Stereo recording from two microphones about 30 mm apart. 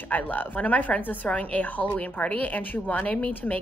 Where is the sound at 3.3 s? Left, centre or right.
Left.